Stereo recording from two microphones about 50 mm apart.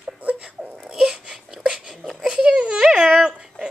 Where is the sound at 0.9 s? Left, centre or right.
Centre.